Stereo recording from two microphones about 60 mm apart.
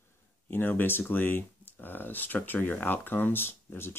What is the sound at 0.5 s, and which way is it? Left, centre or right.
Speech, left.